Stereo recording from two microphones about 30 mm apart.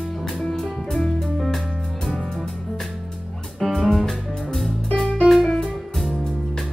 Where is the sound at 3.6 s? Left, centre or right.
Centre.